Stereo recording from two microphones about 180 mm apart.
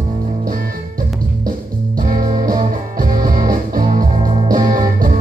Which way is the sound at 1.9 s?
50° right (ahead or behind).